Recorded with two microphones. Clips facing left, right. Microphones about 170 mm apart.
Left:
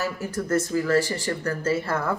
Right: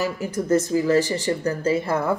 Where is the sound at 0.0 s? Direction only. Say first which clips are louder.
Right 3 dB; 15° right (ahead or behind).